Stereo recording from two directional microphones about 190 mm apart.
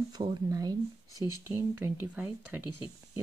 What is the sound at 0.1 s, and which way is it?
Speech, 20° right (ahead or behind).